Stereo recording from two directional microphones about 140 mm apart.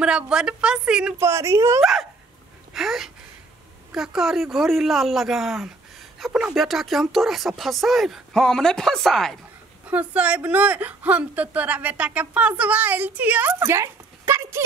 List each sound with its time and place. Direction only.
0.0 s a woman's voice: 5° right (ahead or behind)
1.2 s a woman's voice: 20° right (ahead or behind)
1.8 s speech: centre (ahead or behind)
9.8 s a woman's voice: 10° right (ahead or behind)